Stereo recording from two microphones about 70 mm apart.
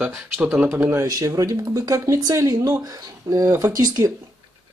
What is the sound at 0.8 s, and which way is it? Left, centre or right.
Speech, right.